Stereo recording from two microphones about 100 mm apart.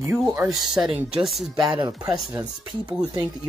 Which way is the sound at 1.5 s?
45° right (ahead or behind).